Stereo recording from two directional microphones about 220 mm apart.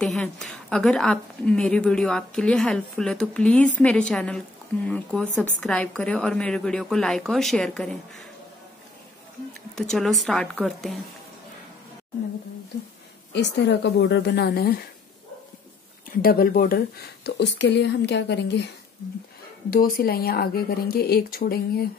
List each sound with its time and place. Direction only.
0.0 s a woman's voice: 5° left (ahead or behind)
9.8 s a woman's voice: centre (ahead or behind)
13.3 s speech: 50° left (ahead or behind)
16.1 s speech: 40° left (ahead or behind)
19.7 s speech: 40° left (ahead or behind)